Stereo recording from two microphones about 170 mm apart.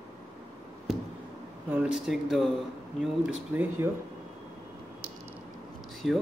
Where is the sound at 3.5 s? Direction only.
10° right (ahead or behind).